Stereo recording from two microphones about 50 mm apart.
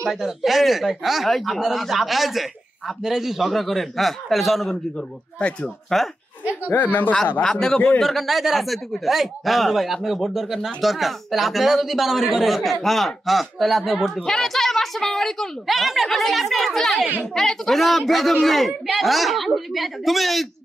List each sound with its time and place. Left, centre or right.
0.1 s speech: centre
5.9 s speech: centre
6.7 s speech: left
7.4 s a woman's voice: centre
15.6 s speech: centre